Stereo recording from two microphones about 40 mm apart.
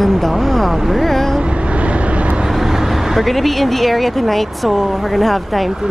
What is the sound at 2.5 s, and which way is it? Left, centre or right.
Speech, centre.